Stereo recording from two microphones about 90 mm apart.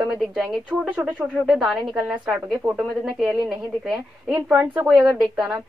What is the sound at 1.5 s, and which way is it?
Speech, centre (ahead or behind).